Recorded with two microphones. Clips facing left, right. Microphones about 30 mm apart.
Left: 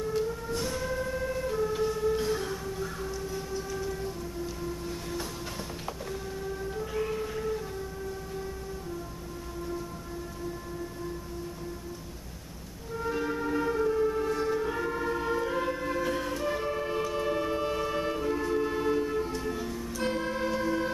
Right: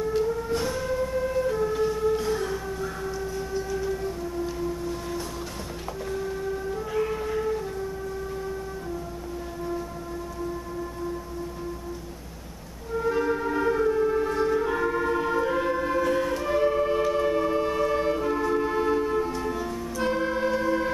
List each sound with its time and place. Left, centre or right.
0.1 s siren: centre
0.7 s emergency vehicle: centre
2.1 s music: centre
3.5 s train: centre
6.0 s train: centre
13.0 s music: centre